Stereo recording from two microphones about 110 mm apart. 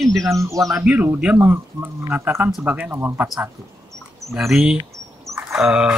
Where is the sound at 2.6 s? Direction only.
15° right (ahead or behind).